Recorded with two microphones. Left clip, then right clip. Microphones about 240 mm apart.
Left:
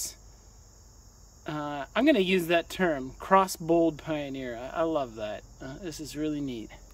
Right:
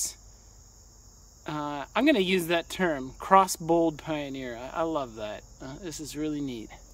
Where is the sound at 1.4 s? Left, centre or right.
Centre.